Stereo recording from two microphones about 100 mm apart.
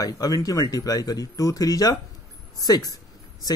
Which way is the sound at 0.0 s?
35° left (ahead or behind).